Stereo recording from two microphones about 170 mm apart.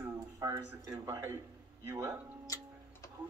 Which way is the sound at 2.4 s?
20° left (ahead or behind).